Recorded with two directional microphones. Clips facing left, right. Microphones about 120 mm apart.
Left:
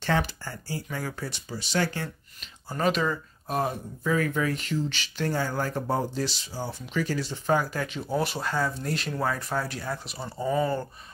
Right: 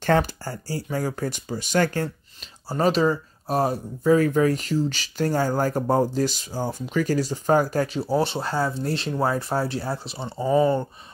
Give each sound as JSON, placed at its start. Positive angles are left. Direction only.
{"t": 0.0, "sound": "speech", "side_deg": -45}
{"t": 2.7, "sound": "speech", "side_deg": -30}